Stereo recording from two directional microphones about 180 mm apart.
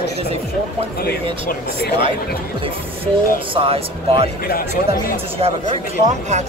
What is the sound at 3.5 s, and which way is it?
Speech, 30° right (ahead or behind).